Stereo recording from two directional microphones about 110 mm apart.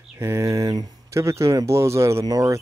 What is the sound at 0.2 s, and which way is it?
Speech, 25° right (ahead or behind).